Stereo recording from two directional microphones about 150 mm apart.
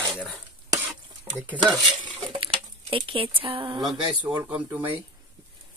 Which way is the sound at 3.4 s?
35° right (ahead or behind).